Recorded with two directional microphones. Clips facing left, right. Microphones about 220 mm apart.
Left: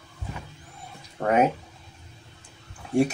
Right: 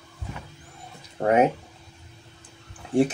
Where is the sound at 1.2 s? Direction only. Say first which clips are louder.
Right 3 dB; 35° right (ahead or behind).